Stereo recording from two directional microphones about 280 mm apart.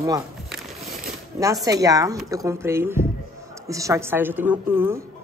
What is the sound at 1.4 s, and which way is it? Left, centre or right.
A woman's voice, centre.